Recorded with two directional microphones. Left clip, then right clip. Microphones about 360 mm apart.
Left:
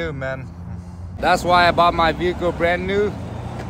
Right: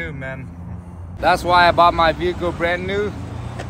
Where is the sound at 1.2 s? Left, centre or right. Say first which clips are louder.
Right 1 dB; centre.